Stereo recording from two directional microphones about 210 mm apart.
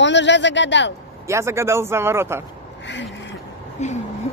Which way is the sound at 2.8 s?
60° left (ahead or behind).